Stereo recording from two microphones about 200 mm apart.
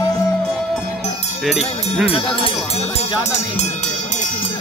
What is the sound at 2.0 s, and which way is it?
Speech, 30° left (ahead or behind).